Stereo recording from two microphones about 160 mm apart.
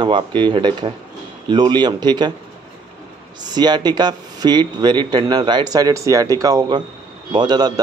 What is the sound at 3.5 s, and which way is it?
Speech, 25° right (ahead or behind).